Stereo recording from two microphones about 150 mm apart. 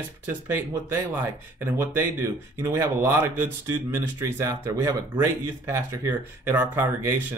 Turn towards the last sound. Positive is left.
turn(degrees=-15)  # may be behind; listen again after turning